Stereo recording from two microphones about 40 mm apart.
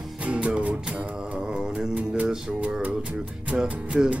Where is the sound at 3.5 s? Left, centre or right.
Centre.